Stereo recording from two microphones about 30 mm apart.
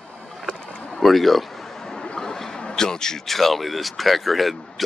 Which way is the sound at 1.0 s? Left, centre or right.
Centre.